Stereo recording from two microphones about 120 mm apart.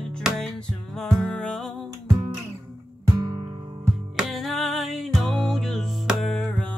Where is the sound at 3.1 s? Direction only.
35° right (ahead or behind).